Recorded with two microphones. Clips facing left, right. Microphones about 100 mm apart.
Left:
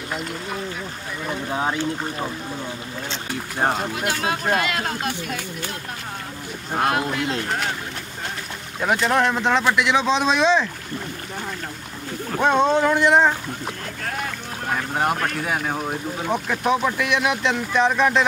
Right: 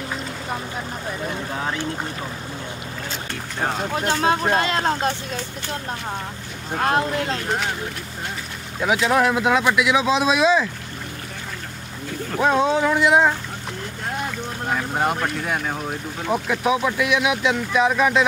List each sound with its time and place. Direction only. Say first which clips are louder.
3.9 s speech: right 4 dB; 35° right (ahead or behind)
6.9 s speech: right 6 dB; 35° right (ahead or behind)
7.4 s speech: right 1 dB; centre (ahead or behind)
8.8 s speech: right 1 dB; centre (ahead or behind)
12.4 s speech: left 1 dB; 5° right (ahead or behind)
14.8 s speech: left 1 dB; centre (ahead or behind)